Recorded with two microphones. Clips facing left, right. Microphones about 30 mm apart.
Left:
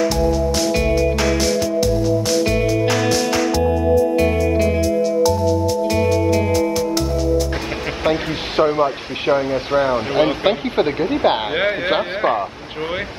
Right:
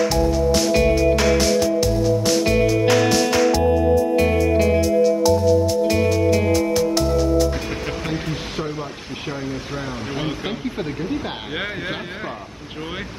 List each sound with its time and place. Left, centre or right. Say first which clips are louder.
0.1 s music: even; centre
8.0 s speech: left 6 dB; left
11.5 s speech: left 8 dB; left